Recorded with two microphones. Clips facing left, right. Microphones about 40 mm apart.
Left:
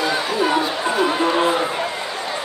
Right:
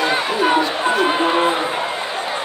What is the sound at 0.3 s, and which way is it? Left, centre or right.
Chatter, right.